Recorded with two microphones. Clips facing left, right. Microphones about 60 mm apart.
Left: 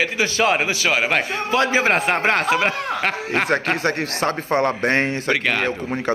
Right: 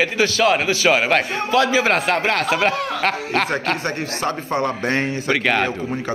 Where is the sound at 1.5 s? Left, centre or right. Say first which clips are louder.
Right 2 dB; left.